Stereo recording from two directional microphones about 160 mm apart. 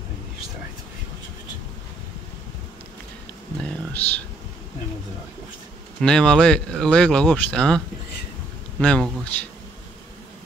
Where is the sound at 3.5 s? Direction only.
5° left (ahead or behind).